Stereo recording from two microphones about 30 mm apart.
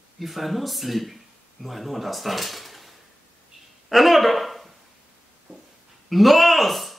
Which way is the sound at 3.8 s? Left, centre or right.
Centre.